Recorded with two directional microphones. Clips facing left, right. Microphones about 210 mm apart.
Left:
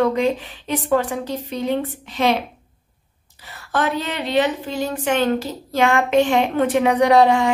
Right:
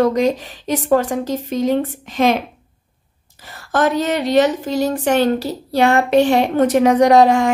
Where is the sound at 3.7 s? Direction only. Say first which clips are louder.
Right 5 dB; 45° right (ahead or behind).